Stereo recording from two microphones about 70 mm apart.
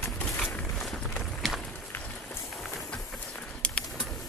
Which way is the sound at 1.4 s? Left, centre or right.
Centre.